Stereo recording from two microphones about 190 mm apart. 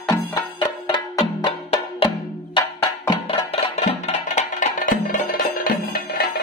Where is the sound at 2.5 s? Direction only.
30° left (ahead or behind).